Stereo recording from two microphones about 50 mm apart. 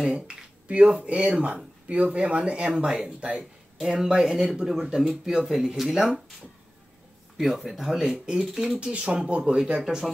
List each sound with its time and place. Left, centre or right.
0.0 s a sound: centre
1.0 s speech: right
3.8 s speech: centre
7.3 s speech: centre
8.7 s speech: right
9.8 s speech: centre